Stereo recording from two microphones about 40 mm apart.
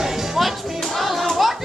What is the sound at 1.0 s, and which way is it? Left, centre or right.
Speech, centre.